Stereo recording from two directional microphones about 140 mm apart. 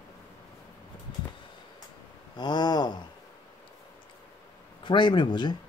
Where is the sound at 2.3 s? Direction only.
30° left (ahead or behind).